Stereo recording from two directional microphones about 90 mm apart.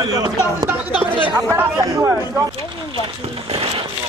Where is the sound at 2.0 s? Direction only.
30° right (ahead or behind).